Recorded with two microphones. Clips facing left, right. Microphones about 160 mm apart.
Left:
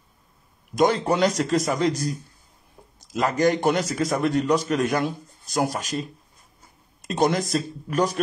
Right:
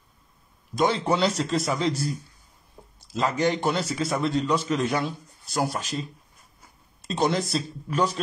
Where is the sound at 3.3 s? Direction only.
40° left (ahead or behind).